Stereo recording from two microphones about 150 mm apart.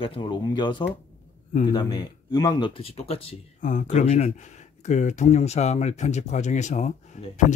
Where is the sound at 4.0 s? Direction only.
45° left (ahead or behind).